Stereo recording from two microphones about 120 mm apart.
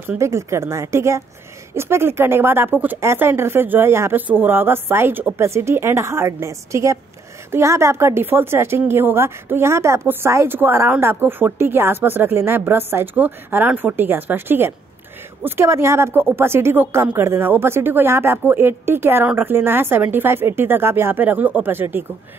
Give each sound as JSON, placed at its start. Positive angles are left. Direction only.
{"t": 0.2, "sound": "a woman's voice", "side_deg": -25}